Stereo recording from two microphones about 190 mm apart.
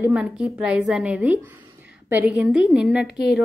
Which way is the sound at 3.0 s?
60° left (ahead or behind).